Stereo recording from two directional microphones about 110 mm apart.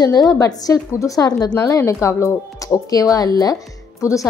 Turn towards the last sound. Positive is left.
turn(degrees=30)  # may be behind; listen again after turning